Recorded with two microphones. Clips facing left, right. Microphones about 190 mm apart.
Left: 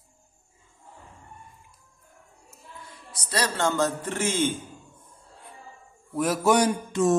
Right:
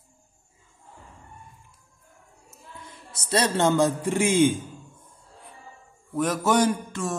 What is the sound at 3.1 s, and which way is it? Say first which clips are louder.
A man's voice: right 4 dB; 25° right (ahead or behind).